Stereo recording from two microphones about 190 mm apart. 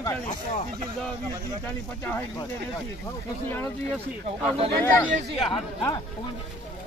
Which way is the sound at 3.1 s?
10° left (ahead or behind).